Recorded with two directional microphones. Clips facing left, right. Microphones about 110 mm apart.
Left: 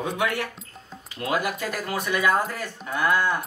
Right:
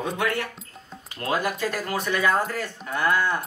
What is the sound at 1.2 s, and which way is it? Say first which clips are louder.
Speech: right 1 dB; 10° left (ahead or behind).